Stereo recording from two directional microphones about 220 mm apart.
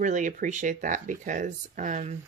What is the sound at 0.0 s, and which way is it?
Speech, 35° right (ahead or behind).